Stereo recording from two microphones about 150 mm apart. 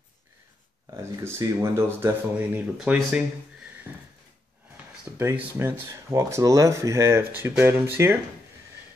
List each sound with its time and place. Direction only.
0.8 s speech: 20° right (ahead or behind)
3.9 s a sound: 10° right (ahead or behind)
4.8 s drawer open or close: 10° right (ahead or behind)
5.1 s speech: 15° right (ahead or behind)